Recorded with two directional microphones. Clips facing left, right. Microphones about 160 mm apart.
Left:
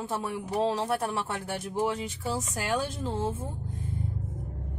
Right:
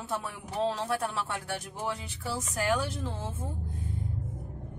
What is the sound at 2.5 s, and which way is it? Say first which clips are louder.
Speech: right 1 dB; 25° left (ahead or behind).